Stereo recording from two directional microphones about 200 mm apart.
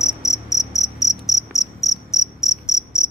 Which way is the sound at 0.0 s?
Centre (ahead or behind).